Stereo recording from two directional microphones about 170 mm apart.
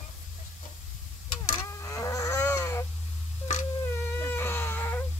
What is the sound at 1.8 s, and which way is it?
Livestock, 20° left (ahead or behind).